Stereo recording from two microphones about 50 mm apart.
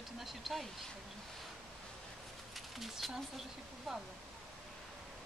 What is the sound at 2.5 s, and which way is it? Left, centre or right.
Speech, centre.